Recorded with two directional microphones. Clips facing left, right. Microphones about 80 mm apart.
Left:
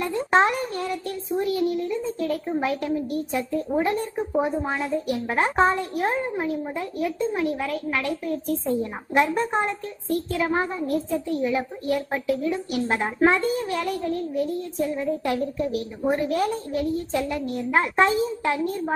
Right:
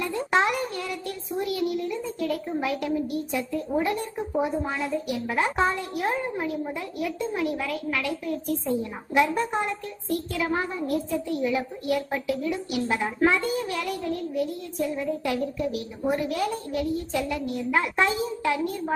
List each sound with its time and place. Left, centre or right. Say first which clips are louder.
0.0 s child singing: left 3 dB; left
3.8 s a woman's voice: left 3 dB; left